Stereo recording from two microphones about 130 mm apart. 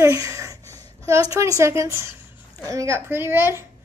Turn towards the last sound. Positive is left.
turn(degrees=-15)  # may be behind; listen again after turning